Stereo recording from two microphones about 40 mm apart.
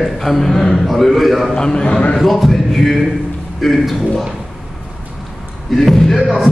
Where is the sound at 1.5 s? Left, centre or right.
Centre.